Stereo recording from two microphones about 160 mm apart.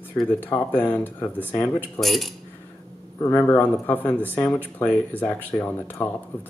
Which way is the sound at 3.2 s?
10° left (ahead or behind).